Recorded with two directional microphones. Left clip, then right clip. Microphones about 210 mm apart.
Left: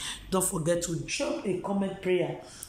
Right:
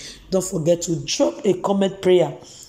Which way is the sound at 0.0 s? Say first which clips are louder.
Right 7 dB; 5° right (ahead or behind).